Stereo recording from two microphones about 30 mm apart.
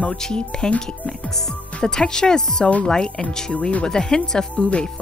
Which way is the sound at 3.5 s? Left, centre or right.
Left.